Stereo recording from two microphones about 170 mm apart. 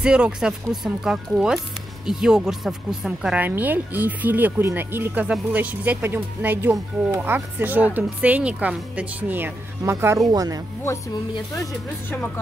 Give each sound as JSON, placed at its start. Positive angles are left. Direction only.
{"t": 0.0, "sound": "speech", "side_deg": -5}